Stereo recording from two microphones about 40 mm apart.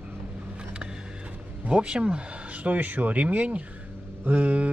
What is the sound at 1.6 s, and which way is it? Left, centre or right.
Speech, right.